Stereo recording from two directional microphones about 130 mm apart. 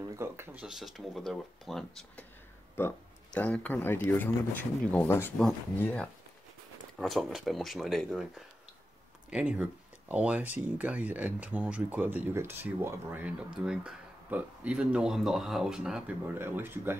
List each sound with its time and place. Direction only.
0.1 s speech: 20° right (ahead or behind)
0.6 s speech: 5° right (ahead or behind)
2.8 s speech: 15° left (ahead or behind)
7.0 s speech: centre (ahead or behind)
16.3 s speech: 15° right (ahead or behind)